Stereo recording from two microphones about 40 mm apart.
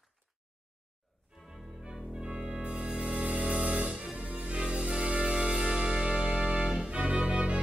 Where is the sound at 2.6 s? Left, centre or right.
Right.